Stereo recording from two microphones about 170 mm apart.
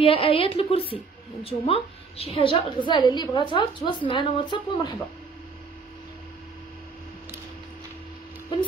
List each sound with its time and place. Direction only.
0.0 s a woman's voice: 35° left (ahead or behind)